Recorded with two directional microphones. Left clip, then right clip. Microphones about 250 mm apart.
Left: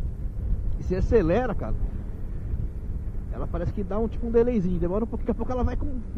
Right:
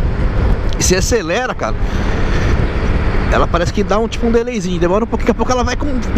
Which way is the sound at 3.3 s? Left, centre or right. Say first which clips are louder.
Right 19 dB; centre.